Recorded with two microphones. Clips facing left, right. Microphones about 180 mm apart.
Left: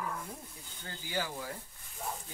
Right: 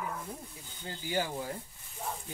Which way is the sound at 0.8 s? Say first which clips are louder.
Right 4 dB; 20° right (ahead or behind).